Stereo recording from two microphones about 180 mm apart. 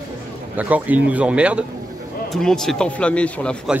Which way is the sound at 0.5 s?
10° right (ahead or behind).